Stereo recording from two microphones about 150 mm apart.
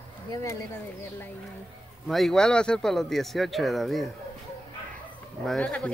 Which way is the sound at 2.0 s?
Centre (ahead or behind).